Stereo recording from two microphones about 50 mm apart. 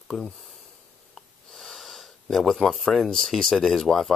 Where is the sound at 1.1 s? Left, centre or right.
Centre.